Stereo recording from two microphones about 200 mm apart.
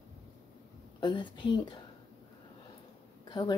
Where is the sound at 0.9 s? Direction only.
20° left (ahead or behind).